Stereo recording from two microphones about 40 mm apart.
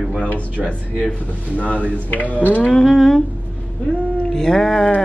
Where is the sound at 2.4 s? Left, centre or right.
Left.